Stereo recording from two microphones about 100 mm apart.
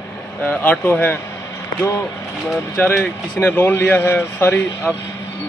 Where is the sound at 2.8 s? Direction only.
20° left (ahead or behind).